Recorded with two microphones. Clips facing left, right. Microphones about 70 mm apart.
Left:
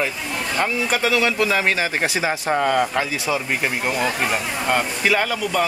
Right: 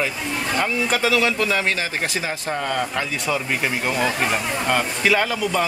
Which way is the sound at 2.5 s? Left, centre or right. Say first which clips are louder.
Left 5 dB; centre.